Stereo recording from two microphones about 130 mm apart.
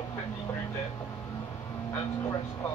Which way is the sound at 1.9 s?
25° left (ahead or behind).